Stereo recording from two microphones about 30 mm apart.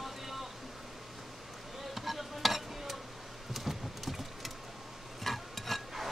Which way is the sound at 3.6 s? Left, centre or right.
Centre.